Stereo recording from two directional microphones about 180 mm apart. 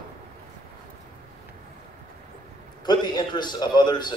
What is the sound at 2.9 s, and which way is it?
A man's voice, 25° left (ahead or behind).